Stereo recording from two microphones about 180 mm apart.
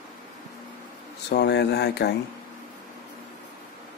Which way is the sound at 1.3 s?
70° left (ahead or behind).